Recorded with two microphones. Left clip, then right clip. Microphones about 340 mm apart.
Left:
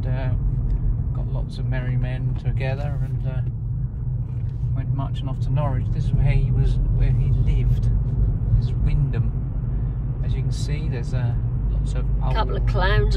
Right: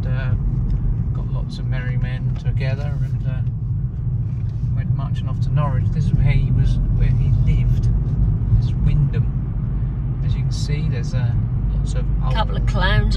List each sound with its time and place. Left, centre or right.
5.5 s speech: left
10.7 s speech: left
12.3 s speech: centre